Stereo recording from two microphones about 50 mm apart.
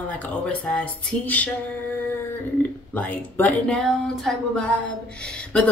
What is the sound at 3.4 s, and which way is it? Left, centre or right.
Speech, left.